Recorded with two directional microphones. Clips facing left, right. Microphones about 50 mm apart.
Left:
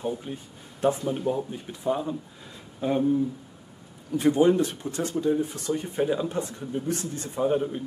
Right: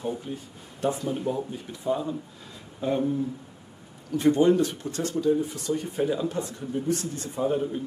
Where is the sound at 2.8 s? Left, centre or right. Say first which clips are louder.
Left 1 dB; centre.